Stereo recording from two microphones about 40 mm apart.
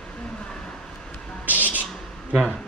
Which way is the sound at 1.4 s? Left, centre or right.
Right.